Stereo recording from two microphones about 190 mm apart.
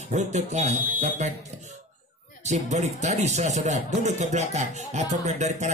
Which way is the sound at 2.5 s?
35° right (ahead or behind).